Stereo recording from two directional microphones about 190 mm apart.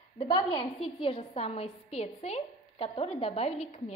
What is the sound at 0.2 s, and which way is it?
A woman's voice, 25° left (ahead or behind).